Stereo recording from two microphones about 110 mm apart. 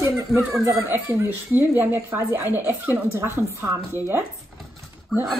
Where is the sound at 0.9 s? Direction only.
15° right (ahead or behind).